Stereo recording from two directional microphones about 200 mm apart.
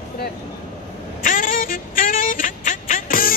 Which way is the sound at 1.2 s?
45° left (ahead or behind).